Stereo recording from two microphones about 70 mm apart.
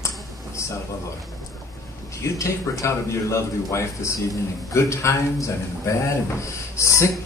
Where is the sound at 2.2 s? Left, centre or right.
Left.